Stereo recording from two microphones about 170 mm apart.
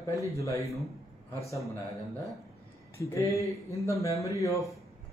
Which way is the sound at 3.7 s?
20° left (ahead or behind).